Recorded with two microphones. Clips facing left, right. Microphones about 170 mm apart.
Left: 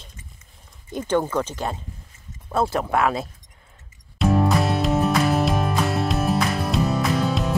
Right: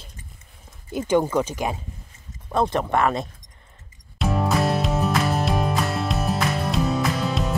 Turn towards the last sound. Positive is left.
turn(degrees=0)  # may be behind; listen again after turning